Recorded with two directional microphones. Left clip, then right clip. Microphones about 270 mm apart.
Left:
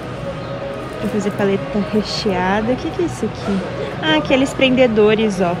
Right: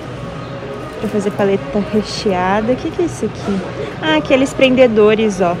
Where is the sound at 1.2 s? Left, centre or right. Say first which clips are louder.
Right 3 dB; centre.